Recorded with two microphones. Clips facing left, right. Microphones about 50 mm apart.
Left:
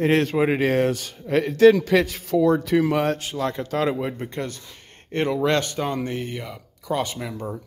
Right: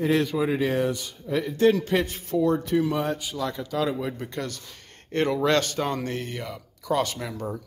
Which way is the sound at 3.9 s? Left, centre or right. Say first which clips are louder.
Left 3 dB; left.